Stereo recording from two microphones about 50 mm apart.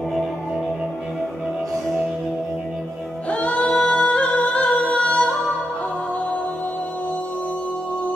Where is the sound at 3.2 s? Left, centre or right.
Left.